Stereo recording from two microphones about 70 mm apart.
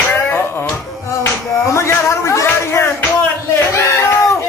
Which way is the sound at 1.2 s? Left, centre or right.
Left.